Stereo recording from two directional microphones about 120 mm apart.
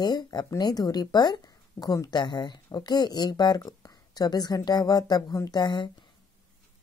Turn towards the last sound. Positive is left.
turn(degrees=40)  # may be behind; listen again after turning